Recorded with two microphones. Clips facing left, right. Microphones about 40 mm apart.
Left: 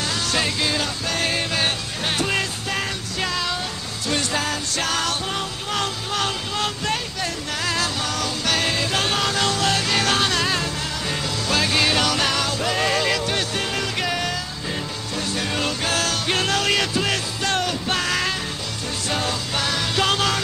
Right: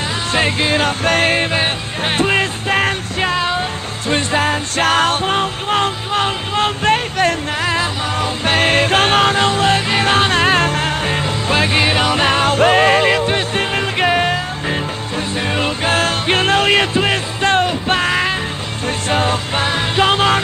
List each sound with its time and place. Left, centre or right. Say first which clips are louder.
0.3 s music: right 8 dB; right
7.6 s music: right 4 dB; right